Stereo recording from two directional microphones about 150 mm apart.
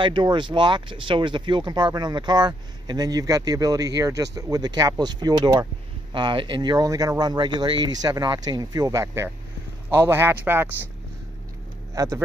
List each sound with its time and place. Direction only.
0.0 s speech: 30° right (ahead or behind); by 10.7 s 15° right (ahead or behind)
11.9 s speech: 25° right (ahead or behind)